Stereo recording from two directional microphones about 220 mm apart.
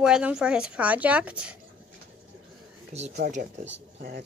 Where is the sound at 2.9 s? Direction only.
30° right (ahead or behind).